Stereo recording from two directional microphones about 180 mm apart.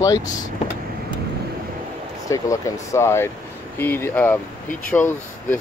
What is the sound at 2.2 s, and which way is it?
Speech, 20° left (ahead or behind).